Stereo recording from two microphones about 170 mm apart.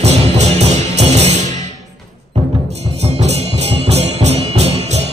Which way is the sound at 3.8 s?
40° right (ahead or behind).